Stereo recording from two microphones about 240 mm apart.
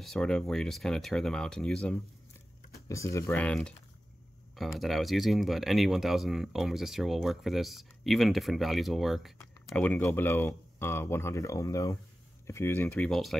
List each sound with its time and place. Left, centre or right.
0.0 s speech: centre
4.7 s speech: centre